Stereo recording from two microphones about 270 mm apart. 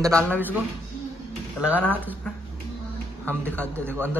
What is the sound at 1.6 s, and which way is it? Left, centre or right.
Speech, centre.